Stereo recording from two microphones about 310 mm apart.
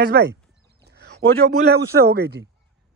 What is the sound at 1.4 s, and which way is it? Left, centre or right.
Speech, right.